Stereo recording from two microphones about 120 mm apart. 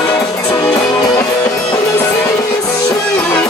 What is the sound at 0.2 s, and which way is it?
Music, 30° left (ahead or behind).